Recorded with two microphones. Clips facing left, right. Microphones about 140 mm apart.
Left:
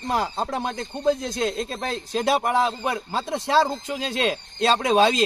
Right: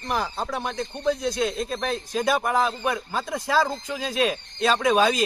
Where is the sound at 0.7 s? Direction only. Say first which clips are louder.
Left 3 dB; 50° left (ahead or behind).